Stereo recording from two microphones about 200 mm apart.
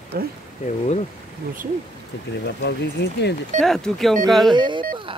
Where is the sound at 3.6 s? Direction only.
Centre (ahead or behind).